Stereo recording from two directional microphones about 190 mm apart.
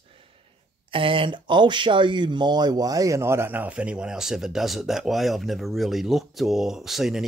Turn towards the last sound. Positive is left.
turn(degrees=0)  # may be behind; listen again after turning